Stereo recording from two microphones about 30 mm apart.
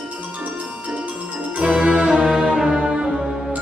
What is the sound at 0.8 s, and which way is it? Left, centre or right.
Music, right.